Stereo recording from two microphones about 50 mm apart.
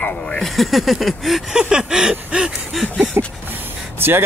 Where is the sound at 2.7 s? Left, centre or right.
Centre.